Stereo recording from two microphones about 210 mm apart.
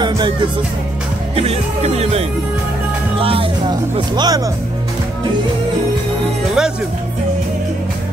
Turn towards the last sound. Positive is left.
turn(degrees=-5)  # may be behind; listen again after turning